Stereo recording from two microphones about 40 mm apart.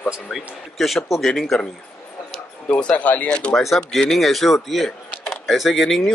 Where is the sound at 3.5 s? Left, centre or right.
Centre.